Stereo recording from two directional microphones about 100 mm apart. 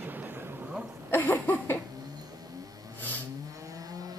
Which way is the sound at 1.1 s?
15° left (ahead or behind).